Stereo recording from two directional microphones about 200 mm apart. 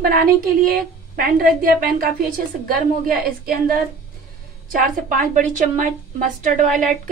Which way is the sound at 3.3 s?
45° right (ahead or behind).